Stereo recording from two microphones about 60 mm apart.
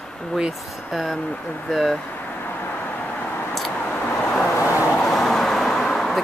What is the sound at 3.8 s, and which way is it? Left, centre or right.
Vehicle, left.